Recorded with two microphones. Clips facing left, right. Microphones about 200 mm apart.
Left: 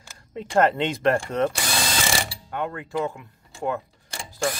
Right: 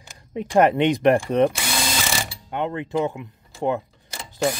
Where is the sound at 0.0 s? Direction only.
20° right (ahead or behind).